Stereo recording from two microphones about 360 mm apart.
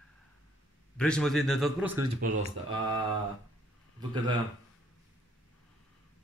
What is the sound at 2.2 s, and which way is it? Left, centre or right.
Speech, right.